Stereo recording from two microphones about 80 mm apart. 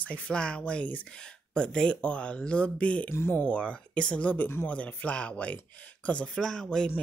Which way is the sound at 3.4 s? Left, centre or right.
Centre.